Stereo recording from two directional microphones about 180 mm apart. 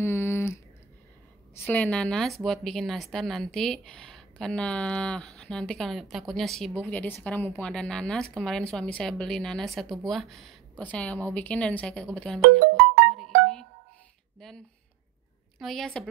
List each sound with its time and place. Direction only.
0.0 s a sound: 15° left (ahead or behind)
1.6 s speech: 10° left (ahead or behind)
13.1 s music: centre (ahead or behind)
15.6 s speech: centre (ahead or behind)